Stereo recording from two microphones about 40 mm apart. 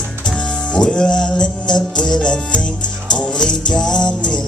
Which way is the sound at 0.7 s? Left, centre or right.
Centre.